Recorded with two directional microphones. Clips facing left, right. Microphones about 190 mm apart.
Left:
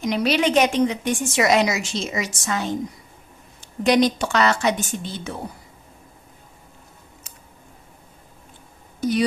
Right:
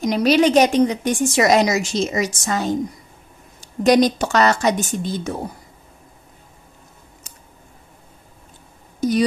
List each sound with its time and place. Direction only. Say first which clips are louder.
0.0 s a woman's voice: right 5 dB; 40° right (ahead or behind)